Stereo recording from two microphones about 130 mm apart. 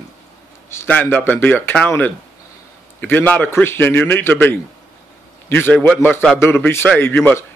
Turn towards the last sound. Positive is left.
turn(degrees=15)  # may be behind; listen again after turning